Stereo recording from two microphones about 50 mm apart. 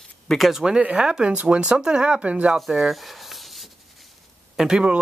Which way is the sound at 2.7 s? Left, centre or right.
Centre.